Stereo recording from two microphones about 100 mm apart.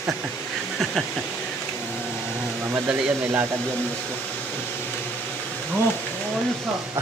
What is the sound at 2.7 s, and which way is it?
Speech, 20° right (ahead or behind).